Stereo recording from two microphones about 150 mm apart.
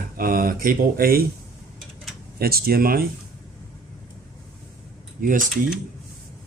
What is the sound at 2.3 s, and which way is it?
Speech, 90° right.